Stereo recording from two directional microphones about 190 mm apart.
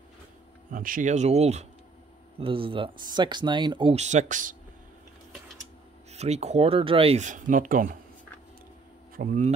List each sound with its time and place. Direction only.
0.7 s speech: 45° right (ahead or behind)
6.1 s speech: 35° right (ahead or behind)
9.1 s speech: 45° right (ahead or behind)